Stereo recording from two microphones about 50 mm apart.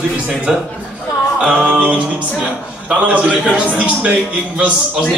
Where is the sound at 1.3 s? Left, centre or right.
Right.